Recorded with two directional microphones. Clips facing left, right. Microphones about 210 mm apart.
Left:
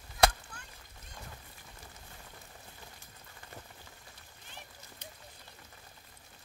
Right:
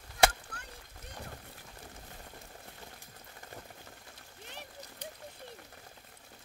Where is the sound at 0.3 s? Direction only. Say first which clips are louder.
Right 2 dB; 60° right (ahead or behind).